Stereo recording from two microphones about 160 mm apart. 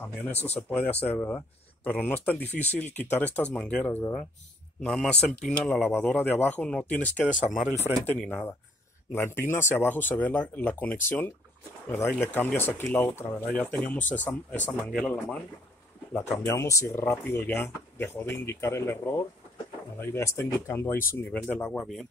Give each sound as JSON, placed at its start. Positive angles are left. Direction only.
{"t": 0.6, "sound": "speech", "side_deg": 10}